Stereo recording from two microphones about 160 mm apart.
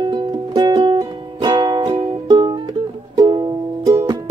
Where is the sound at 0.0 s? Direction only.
25° right (ahead or behind).